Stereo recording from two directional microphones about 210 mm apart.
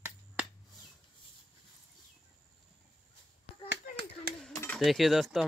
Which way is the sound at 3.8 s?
45° left (ahead or behind).